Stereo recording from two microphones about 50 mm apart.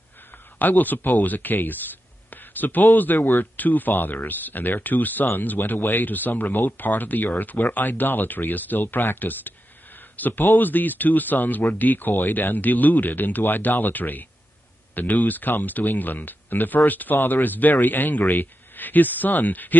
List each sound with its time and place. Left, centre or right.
0.6 s speech: left